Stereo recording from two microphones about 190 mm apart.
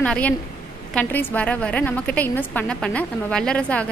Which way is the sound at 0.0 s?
5° left (ahead or behind).